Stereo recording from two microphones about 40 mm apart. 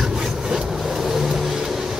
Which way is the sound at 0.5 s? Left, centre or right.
Right.